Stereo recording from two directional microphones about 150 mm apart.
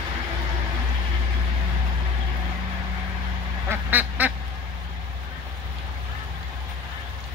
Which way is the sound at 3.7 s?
10° right (ahead or behind).